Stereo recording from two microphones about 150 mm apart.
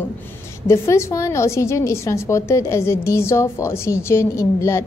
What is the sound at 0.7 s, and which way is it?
A woman's voice, 20° left (ahead or behind).